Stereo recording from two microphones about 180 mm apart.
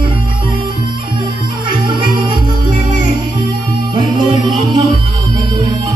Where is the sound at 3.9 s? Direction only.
25° right (ahead or behind).